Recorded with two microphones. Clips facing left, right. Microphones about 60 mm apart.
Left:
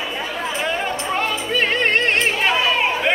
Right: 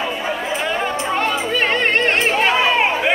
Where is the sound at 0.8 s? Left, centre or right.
Centre.